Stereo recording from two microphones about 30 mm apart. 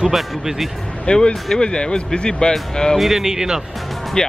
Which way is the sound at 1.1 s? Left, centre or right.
Left.